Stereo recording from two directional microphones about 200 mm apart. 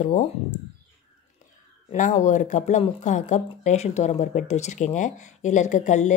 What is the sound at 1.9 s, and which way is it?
Speech, 40° left (ahead or behind).